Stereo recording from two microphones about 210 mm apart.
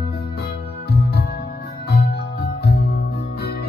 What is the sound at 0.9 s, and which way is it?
Music, 50° left (ahead or behind).